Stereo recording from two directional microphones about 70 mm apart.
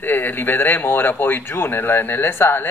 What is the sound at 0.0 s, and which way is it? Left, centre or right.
A woman's voice, left.